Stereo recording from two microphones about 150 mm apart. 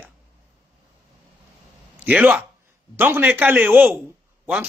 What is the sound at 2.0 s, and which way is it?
A man's voice, 10° right (ahead or behind).